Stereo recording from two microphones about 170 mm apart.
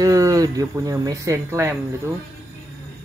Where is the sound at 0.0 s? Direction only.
20° right (ahead or behind).